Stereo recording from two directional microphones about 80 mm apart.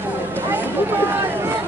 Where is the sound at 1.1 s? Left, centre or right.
Right.